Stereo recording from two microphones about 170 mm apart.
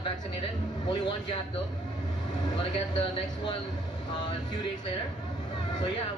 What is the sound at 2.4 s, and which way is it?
Speech, 25° left (ahead or behind).